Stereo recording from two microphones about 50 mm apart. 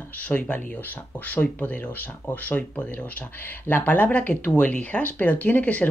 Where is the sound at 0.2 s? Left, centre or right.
Left.